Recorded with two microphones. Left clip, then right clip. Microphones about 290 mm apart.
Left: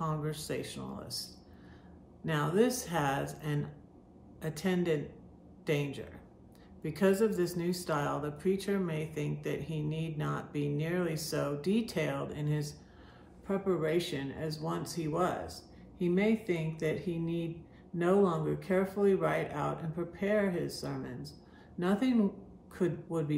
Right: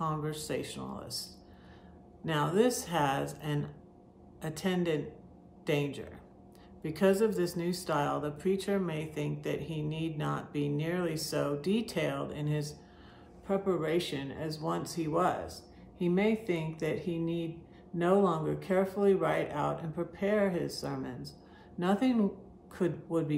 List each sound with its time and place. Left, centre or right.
0.0 s speech: centre
2.2 s speech: centre